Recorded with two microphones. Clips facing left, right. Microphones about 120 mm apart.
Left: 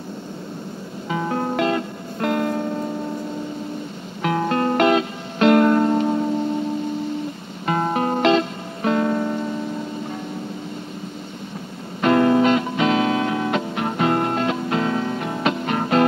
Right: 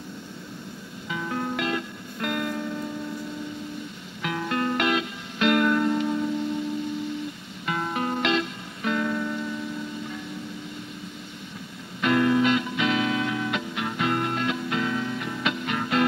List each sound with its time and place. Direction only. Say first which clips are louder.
1.0 s music: left 6 dB; 45° left (ahead or behind)
4.2 s music: left 7 dB; 45° left (ahead or behind)
7.6 s music: left 7 dB; 45° left (ahead or behind)
12.0 s music: left 5 dB; 45° left (ahead or behind)